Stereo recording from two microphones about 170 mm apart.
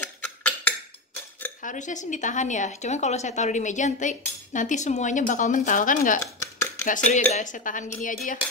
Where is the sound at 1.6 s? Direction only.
45° left (ahead or behind).